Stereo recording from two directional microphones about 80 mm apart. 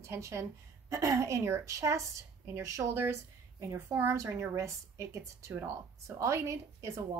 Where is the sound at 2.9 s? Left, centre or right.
Right.